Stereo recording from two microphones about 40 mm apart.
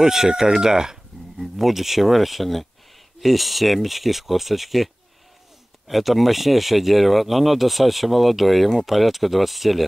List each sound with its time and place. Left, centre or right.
0.0 s speech: centre
1.4 s speech: centre